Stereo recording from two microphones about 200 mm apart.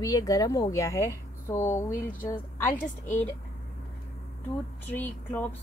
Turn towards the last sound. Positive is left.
turn(degrees=10)  # may be behind; listen again after turning